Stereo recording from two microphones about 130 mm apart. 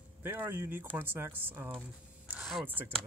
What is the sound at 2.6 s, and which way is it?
Speech, 15° right (ahead or behind).